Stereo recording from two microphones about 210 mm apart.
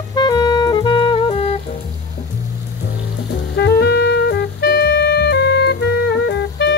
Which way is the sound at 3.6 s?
50° left (ahead or behind).